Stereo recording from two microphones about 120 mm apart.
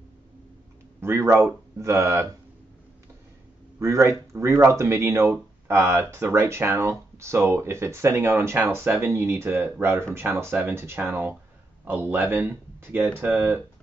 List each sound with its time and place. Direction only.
1.0 s speech: 20° right (ahead or behind)
3.8 s speech: 25° right (ahead or behind)